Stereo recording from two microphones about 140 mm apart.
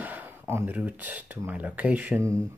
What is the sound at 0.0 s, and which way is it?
Speech, 15° right (ahead or behind).